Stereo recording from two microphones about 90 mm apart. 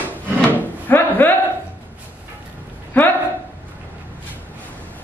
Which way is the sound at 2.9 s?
20° left (ahead or behind).